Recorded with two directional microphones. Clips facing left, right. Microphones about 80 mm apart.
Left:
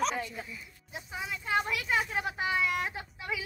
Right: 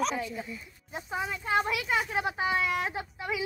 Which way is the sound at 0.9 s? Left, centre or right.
Right.